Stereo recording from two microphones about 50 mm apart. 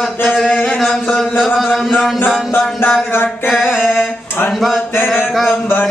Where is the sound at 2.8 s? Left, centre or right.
Left.